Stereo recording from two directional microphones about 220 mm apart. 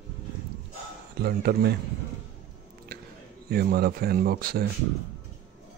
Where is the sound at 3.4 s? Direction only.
45° right (ahead or behind).